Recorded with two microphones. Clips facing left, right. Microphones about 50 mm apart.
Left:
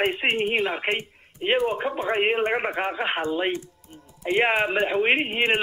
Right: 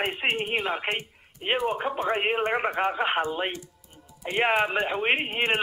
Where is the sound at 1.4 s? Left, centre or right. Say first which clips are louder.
Left 3 dB; centre.